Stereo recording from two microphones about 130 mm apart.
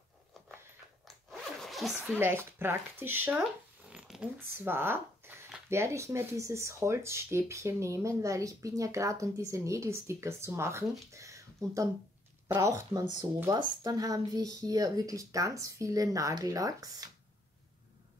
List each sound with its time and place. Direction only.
1.0 s zipper: centre (ahead or behind)
2.1 s speech: 20° right (ahead or behind)